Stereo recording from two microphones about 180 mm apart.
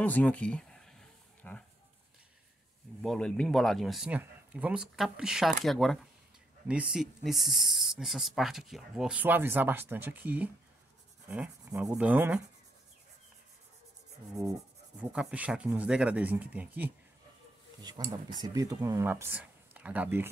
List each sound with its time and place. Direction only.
0.0 s a sound: 10° left (ahead or behind)
3.0 s speech: 5° left (ahead or behind)
15.0 s speech: 5° right (ahead or behind)
18.1 s speech: 25° right (ahead or behind)